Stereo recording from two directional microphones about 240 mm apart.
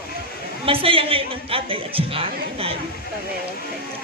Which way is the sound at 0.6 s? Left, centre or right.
Right.